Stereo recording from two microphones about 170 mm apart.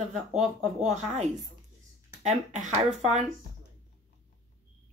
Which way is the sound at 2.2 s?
45° right (ahead or behind).